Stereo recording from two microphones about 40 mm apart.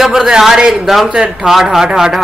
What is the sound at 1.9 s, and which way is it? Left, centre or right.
Speech, centre.